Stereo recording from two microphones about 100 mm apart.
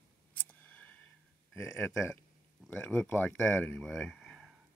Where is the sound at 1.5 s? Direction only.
20° left (ahead or behind).